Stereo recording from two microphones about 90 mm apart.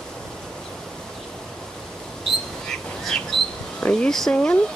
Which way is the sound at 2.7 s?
5° left (ahead or behind).